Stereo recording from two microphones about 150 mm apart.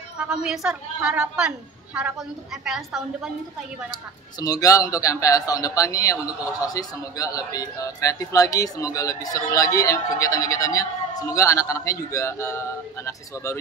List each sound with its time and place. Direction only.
0.2 s a woman's voice: 5° right (ahead or behind)
3.9 s speech: 25° left (ahead or behind)